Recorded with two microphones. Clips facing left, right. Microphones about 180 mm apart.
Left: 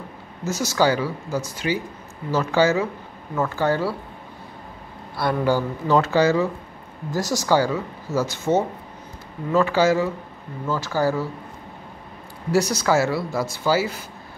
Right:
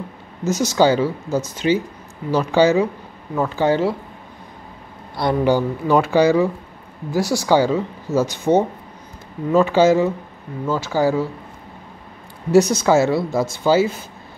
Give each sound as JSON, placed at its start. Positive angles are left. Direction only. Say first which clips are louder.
{"t": 0.4, "sound": "speech", "louder": "right 5 dB", "side_deg": -20}
{"t": 5.1, "sound": "speech", "louder": "right 4 dB", "side_deg": -20}
{"t": 12.4, "sound": "speech", "louder": "right 6 dB", "side_deg": -20}